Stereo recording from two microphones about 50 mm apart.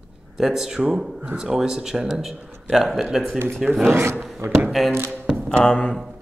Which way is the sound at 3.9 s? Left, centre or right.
Right.